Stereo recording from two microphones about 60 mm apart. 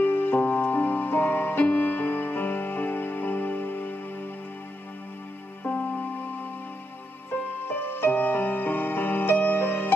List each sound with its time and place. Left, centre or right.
0.0 s music: left
5.6 s music: left
7.6 s music: left